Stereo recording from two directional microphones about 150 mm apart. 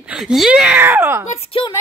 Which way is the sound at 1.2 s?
45° left (ahead or behind).